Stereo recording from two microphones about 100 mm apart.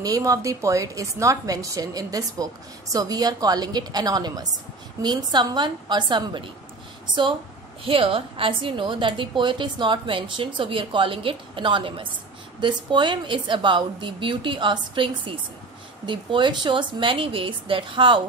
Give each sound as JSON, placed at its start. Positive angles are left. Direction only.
{"t": 0.0, "sound": "a woman's voice", "side_deg": -35}
{"t": 7.8, "sound": "a woman's voice", "side_deg": -65}